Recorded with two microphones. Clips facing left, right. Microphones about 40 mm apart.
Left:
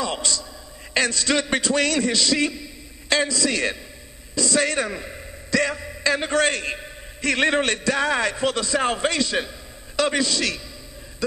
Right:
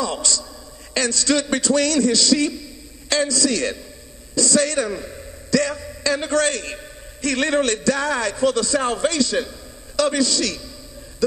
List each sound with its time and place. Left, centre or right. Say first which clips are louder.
0.0 s a man's voice: right 2 dB; left